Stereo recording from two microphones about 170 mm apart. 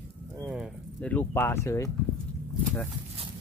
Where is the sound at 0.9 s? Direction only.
10° left (ahead or behind).